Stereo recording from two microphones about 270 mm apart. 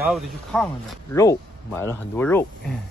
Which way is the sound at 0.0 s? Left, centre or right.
Centre.